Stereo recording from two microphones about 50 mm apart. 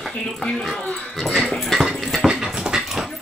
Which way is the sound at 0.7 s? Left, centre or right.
Centre.